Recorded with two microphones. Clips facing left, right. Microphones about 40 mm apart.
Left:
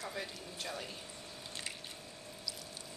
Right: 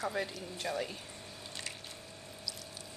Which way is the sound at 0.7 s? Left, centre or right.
Right.